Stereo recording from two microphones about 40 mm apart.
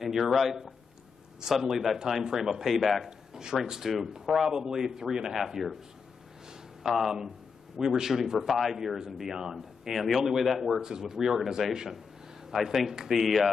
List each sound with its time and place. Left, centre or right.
0.0 s speech: centre
3.1 s speech: centre
6.8 s speech: centre
9.9 s speech: centre
10.8 s speech: centre